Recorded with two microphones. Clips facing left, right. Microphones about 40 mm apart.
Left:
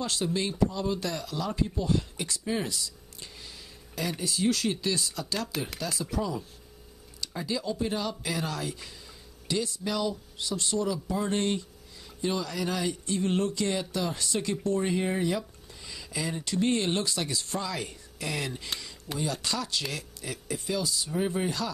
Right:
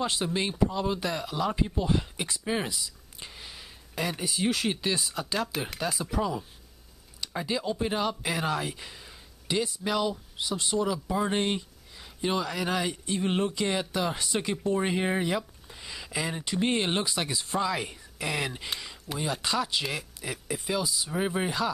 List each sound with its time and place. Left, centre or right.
0.0 s speech: right